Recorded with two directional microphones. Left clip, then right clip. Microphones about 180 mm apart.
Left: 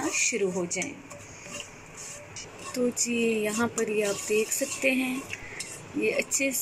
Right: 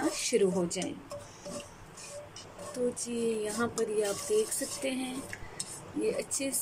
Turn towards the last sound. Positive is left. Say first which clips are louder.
# left 6 dB
turn(degrees=0)  # may be behind; listen again after turning